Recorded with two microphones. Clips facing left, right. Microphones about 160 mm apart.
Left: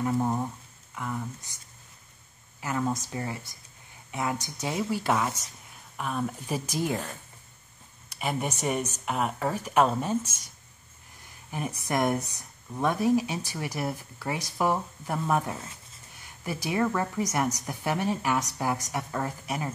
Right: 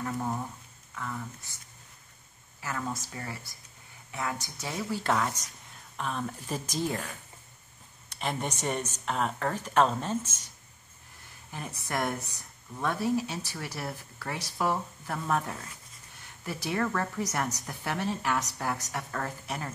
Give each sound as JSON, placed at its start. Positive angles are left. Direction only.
{"t": 0.0, "sound": "speech", "side_deg": 20}
{"t": 2.6, "sound": "speech", "side_deg": 20}
{"t": 5.0, "sound": "speech", "side_deg": 5}
{"t": 8.1, "sound": "speech", "side_deg": 10}
{"t": 11.5, "sound": "speech", "side_deg": 15}
{"t": 15.5, "sound": "speech", "side_deg": 25}
{"t": 16.2, "sound": "speech", "side_deg": 10}